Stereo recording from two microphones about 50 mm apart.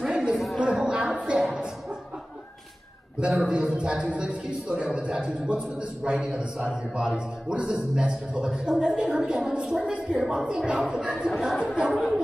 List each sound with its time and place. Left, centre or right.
0.0 s a sound: centre
3.4 s a man's voice: right
11.3 s speech: centre
11.6 s a man's voice: centre
11.9 s speech: centre